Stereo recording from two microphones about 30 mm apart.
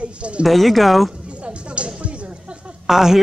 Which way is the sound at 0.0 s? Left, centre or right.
Right.